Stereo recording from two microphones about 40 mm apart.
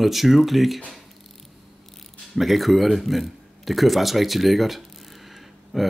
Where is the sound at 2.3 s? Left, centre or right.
Centre.